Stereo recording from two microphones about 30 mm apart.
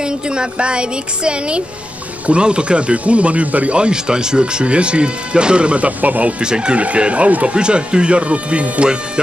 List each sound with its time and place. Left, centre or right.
0.0 s speech: right
3.7 s speech: right
5.9 s speech: right
6.4 s speech: right
7.0 s speech: right
7.5 s speech: right